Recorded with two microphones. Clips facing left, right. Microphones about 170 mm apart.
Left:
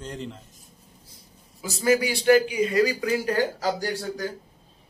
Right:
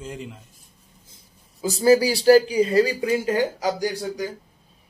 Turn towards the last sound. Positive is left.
turn(degrees=-15)  # may be behind; listen again after turning